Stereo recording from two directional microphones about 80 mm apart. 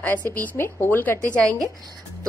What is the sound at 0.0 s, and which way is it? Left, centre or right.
A woman's voice, left.